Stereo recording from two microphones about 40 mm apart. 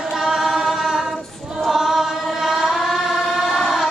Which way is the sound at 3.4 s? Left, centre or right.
Centre.